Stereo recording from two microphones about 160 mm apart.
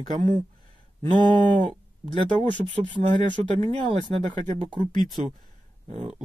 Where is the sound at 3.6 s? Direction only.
30° right (ahead or behind).